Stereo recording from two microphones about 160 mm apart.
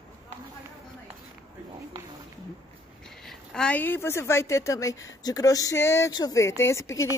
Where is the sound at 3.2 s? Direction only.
5° left (ahead or behind).